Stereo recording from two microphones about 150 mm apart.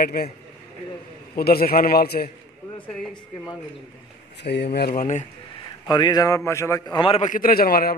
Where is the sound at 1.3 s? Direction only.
90° left.